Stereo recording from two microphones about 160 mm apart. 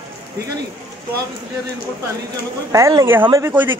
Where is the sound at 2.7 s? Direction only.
20° right (ahead or behind).